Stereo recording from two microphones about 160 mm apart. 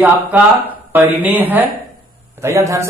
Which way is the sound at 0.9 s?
10° right (ahead or behind).